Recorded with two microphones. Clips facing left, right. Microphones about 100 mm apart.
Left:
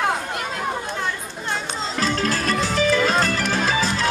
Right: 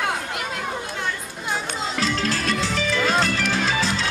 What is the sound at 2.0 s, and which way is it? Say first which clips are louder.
Music: left 3 dB; 45° left (ahead or behind).